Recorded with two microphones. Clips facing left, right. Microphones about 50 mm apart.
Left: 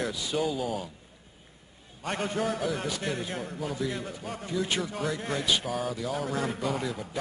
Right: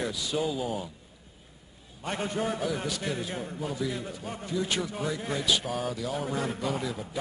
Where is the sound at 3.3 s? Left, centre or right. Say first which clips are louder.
Even; centre.